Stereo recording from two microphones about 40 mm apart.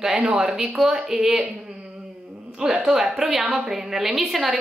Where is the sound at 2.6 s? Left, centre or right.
Centre.